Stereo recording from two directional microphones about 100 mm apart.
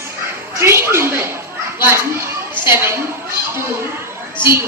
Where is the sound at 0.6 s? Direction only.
25° right (ahead or behind).